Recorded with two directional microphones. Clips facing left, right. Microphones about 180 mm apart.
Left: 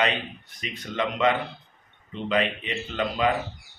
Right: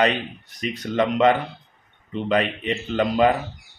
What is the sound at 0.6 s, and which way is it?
A man's voice, 45° right (ahead or behind).